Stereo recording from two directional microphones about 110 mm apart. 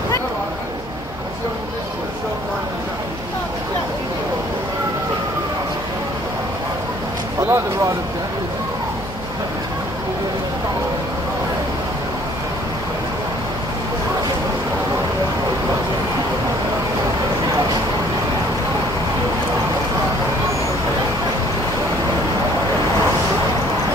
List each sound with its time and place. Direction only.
7.4 s speech: 25° right (ahead or behind)